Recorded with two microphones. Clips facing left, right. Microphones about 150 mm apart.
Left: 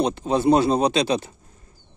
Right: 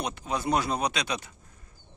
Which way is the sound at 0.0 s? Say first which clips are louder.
Left 11 dB; 30° left (ahead or behind).